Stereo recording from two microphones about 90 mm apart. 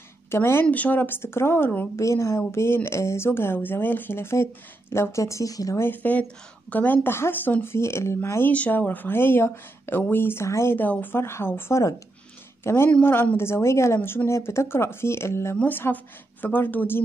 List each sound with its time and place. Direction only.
0.3 s speech: 25° left (ahead or behind)
2.0 s speech: 30° left (ahead or behind)
5.8 s speech: 20° left (ahead or behind)